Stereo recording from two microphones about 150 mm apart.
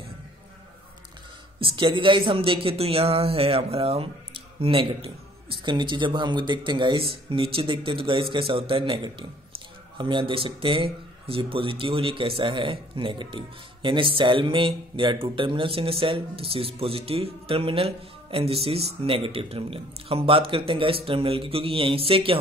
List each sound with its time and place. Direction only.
1.6 s speech: 35° right (ahead or behind)